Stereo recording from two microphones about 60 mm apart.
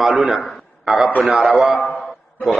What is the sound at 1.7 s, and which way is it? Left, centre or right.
Speech, centre.